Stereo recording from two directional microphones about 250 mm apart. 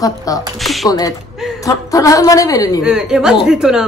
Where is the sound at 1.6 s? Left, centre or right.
Centre.